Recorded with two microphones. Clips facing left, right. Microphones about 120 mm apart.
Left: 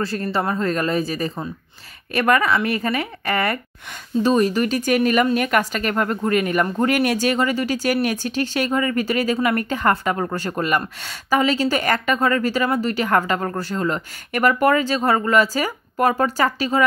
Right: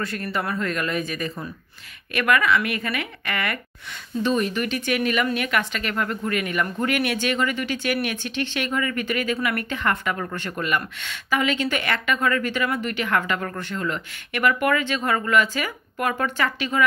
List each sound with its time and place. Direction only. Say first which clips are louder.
0.0 s speech: left 5 dB; 30° left (ahead or behind)